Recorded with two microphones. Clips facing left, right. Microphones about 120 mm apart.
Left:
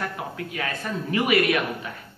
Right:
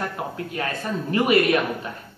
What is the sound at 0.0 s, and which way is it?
Speech, 35° right (ahead or behind).